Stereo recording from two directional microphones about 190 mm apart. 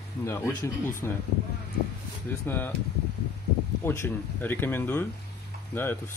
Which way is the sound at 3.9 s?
10° left (ahead or behind).